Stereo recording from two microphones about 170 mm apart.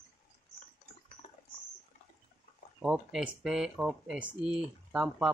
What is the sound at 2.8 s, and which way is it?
Speech, 5° right (ahead or behind).